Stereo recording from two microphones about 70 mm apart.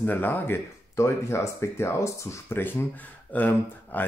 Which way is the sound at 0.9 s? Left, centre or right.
Left.